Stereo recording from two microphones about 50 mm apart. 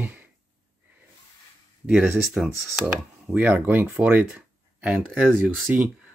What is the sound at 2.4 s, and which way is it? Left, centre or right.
Speech, centre.